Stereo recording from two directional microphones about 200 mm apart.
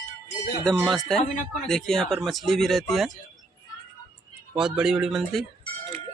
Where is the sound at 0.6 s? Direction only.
Centre (ahead or behind).